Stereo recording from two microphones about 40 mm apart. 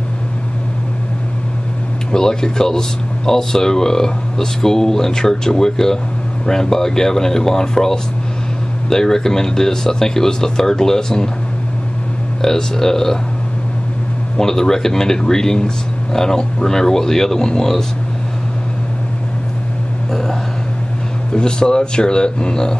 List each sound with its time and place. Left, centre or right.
2.1 s speech: centre
12.4 s speech: centre
14.3 s speech: centre
20.1 s a sound: centre
21.3 s speech: left